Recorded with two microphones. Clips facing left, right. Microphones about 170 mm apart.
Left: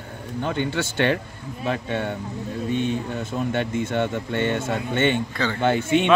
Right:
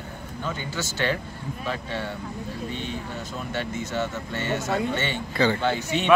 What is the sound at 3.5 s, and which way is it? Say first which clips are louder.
Speech: left 3 dB; 55° left (ahead or behind).